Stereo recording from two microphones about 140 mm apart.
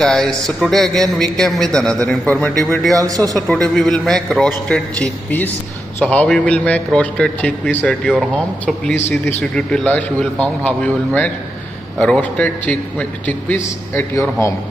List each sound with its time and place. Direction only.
0.0 s a man's voice: 5° left (ahead or behind)
2.9 s a man's voice: 25° right (ahead or behind)
3.3 s a man's voice: 5° left (ahead or behind)
13.9 s speech: 20° left (ahead or behind)